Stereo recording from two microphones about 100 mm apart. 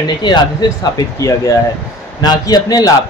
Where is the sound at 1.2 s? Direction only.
35° left (ahead or behind).